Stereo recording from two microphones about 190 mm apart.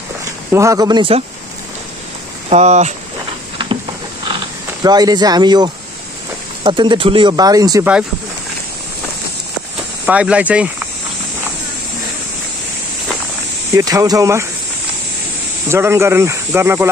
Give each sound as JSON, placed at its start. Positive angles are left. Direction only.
{"t": 0.5, "sound": "speech", "side_deg": -15}
{"t": 2.5, "sound": "speech", "side_deg": -40}
{"t": 4.8, "sound": "speech", "side_deg": -20}
{"t": 10.0, "sound": "speech", "side_deg": -5}
{"t": 13.7, "sound": "speech", "side_deg": -20}
{"t": 15.7, "sound": "speech", "side_deg": -15}